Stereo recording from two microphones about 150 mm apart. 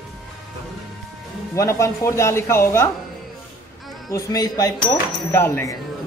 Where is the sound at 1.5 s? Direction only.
20° left (ahead or behind).